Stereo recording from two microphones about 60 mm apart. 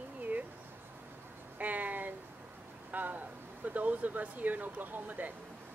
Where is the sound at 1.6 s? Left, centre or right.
Right.